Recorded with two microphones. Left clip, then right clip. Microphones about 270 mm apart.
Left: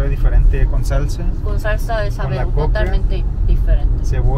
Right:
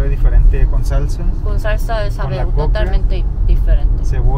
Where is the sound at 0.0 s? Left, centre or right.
Centre.